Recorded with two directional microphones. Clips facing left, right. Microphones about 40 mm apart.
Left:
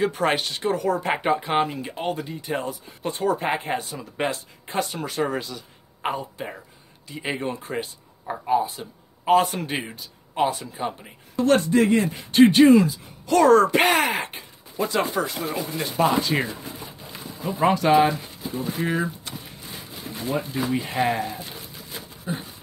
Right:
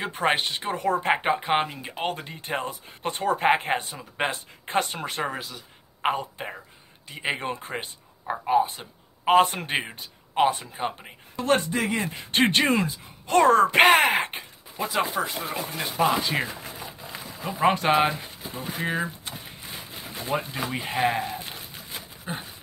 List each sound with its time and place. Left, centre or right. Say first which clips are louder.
0.2 s speech: left 1 dB; right
1.2 s speech: left 2 dB; right
2.0 s speech: even; right
5.3 s speech: left 5 dB; centre
6.1 s speech: even; right
12.0 s speech: left 7 dB; right
13.7 s speech: right 2 dB; right
14.8 s speech: left 2 dB; centre
15.1 s speech: left 2 dB; right
16.0 s speech: left 2 dB; centre
17.6 s speech: left 3 dB; right
20.2 s speech: left 3 dB; right